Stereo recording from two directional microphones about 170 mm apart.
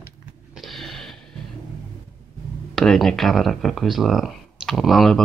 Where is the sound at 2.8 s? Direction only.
Centre (ahead or behind).